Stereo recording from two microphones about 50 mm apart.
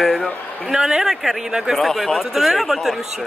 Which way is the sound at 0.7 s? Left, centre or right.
Centre.